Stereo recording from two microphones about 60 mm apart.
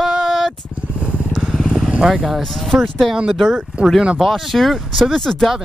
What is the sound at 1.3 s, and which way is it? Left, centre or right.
Vehicle, centre.